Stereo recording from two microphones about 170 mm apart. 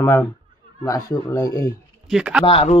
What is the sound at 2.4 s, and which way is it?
Speech, 35° left (ahead or behind).